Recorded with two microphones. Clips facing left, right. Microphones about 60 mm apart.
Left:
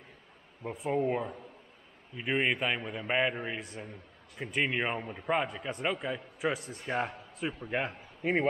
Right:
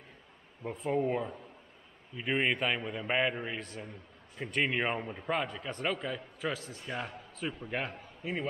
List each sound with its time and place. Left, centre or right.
0.7 s a man's voice: centre
5.3 s a man's voice: centre; by 7.4 s left
7.4 s a man's voice: centre
8.2 s speech: left